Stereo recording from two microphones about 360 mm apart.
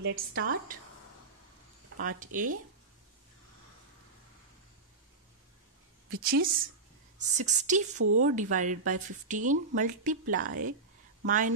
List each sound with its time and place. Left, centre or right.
0.0 s a woman's voice: right
2.0 s a woman's voice: right
6.3 s a woman's voice: right
8.0 s speech: right
8.4 s a woman's voice: right